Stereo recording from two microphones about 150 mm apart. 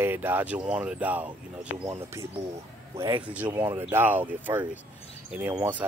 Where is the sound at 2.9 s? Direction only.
15° right (ahead or behind).